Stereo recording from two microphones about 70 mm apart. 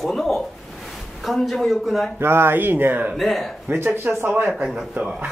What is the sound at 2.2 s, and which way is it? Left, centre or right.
Speech, right.